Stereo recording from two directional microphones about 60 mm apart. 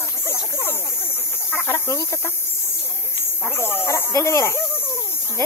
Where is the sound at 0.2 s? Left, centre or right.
Left.